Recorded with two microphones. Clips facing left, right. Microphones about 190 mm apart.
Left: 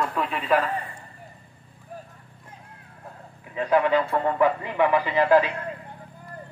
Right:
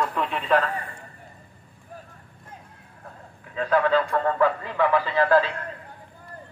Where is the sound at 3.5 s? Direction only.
15° left (ahead or behind).